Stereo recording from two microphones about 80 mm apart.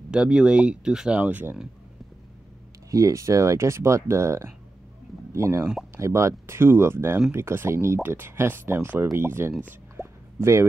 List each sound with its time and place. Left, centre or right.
0.1 s speech: centre
1.2 s speech: right
2.9 s speech: right
9.9 s a sound: right